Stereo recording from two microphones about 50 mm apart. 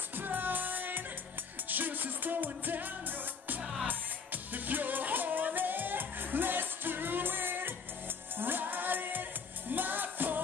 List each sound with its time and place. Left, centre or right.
0.1 s music: right